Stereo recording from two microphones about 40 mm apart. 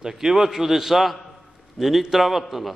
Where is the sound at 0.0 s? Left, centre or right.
Centre.